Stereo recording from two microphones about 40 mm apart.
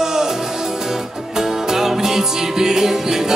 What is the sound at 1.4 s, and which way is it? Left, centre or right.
Music, centre.